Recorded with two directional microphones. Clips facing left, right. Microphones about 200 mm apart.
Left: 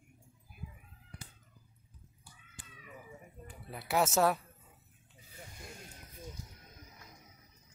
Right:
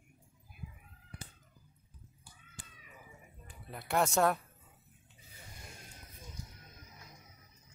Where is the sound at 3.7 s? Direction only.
5° left (ahead or behind).